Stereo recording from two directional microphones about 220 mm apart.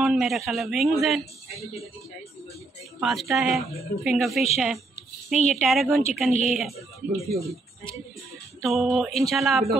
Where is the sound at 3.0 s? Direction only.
Centre (ahead or behind).